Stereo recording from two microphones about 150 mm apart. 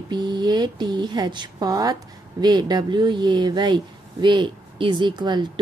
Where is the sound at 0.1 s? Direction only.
30° right (ahead or behind).